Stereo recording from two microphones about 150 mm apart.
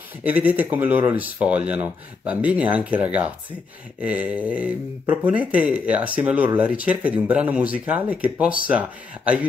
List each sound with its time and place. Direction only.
0.2 s speech: 10° right (ahead or behind)